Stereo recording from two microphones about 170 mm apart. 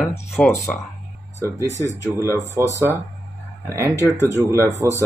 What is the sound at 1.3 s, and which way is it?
Speech, 15° right (ahead or behind).